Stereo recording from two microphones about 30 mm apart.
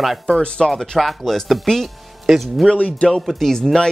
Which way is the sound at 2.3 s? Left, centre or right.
Centre.